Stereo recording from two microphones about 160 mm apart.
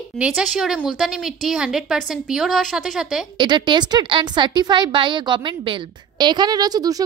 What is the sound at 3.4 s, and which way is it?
A woman's voice, 30° right (ahead or behind).